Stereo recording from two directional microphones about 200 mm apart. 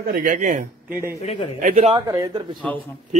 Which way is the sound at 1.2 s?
30° left (ahead or behind).